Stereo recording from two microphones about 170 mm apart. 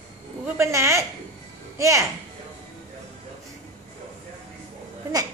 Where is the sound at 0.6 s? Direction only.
15° right (ahead or behind).